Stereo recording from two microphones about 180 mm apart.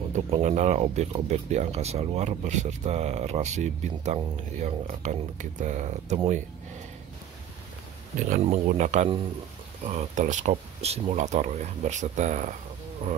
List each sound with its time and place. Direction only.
0.1 s speech: 40° right (ahead or behind)
8.2 s speech: 40° right (ahead or behind)